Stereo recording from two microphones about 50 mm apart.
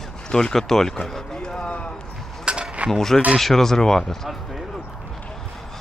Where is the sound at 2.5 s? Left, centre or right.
Right.